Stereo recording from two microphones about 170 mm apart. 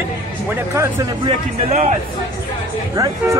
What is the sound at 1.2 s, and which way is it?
Speech, 40° right (ahead or behind).